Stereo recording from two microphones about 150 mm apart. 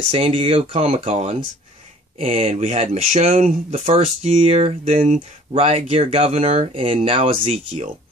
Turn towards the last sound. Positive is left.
turn(degrees=-40)  # may be behind; listen again after turning